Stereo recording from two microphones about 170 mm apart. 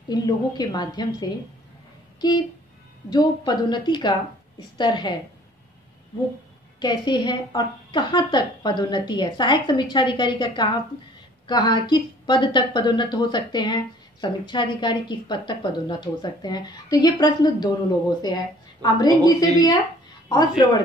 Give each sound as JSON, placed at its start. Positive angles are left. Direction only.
{"t": 0.1, "sound": "a woman's voice", "side_deg": 25}
{"t": 2.2, "sound": "a woman's voice", "side_deg": 25}
{"t": 6.8, "sound": "a woman's voice", "side_deg": 25}
{"t": 18.8, "sound": "a woman's voice", "side_deg": 25}